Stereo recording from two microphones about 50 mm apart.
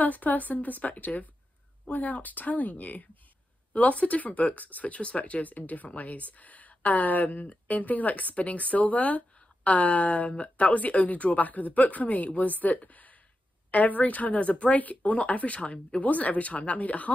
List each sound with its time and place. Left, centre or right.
0.0 s speech: left